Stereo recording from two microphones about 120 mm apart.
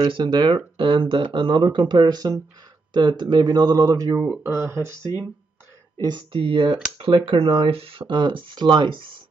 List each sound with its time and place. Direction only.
0.0 s speech: 40° right (ahead or behind)
4.3 s speech: 20° right (ahead or behind)
5.9 s speech: 40° right (ahead or behind)